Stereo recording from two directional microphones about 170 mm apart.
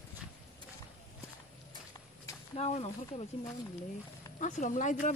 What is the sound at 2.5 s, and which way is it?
Speech, 40° left (ahead or behind).